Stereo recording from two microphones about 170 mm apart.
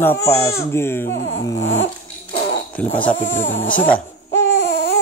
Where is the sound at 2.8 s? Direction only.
5° left (ahead or behind).